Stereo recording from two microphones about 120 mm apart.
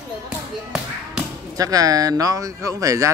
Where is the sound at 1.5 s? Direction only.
30° right (ahead or behind).